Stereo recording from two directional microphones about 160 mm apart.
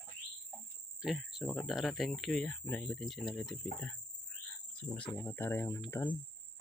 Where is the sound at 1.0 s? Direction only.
Centre (ahead or behind).